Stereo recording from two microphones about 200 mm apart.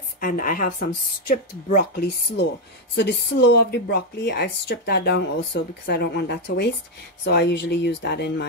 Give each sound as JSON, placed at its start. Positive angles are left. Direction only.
{"t": 0.2, "sound": "speech", "side_deg": 45}